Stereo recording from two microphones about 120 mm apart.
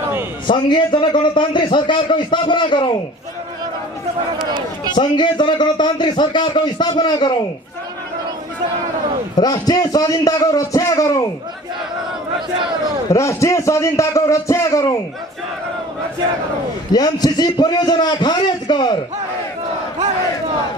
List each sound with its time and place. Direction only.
0.5 s a man's voice: 40° left (ahead or behind)
4.4 s a man's voice: 40° right (ahead or behind)
4.9 s a man's voice: 40° left (ahead or behind)
9.4 s a man's voice: 30° left (ahead or behind)
13.1 s speech: 25° left (ahead or behind)
16.9 s a man's voice: 35° left (ahead or behind)